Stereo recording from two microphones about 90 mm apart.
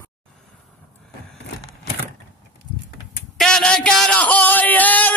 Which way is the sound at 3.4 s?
10° left (ahead or behind).